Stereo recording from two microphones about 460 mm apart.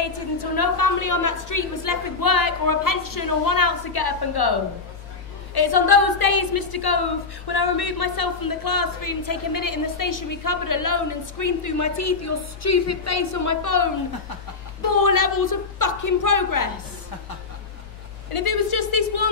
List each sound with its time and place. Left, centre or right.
0.0 s a woman's voice: left
18.3 s speech: left